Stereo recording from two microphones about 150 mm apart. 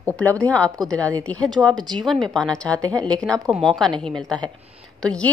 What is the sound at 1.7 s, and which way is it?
Speech, 30° right (ahead or behind).